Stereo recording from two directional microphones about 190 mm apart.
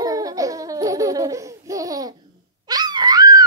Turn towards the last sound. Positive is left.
turn(degrees=-20)  # may be behind; listen again after turning